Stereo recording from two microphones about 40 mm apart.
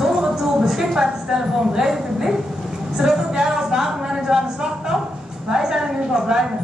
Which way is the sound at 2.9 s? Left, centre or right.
Centre.